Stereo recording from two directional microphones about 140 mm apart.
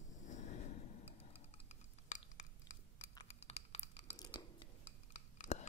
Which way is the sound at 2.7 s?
30° left (ahead or behind).